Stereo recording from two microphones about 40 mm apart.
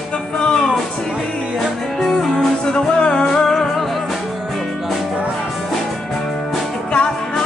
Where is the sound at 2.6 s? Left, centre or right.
Left.